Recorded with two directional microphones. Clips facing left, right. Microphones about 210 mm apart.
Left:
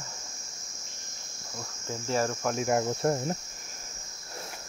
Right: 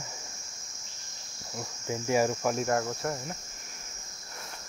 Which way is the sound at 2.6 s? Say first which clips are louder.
Left 2 dB; 15° left (ahead or behind).